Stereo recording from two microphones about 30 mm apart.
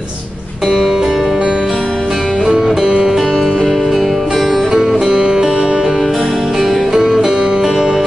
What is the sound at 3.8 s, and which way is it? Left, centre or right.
Music, centre.